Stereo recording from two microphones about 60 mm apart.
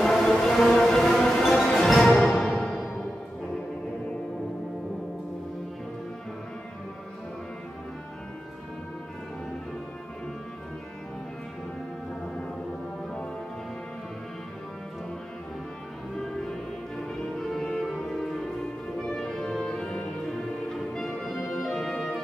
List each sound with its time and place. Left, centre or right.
0.0 s music: centre
17.4 s music: centre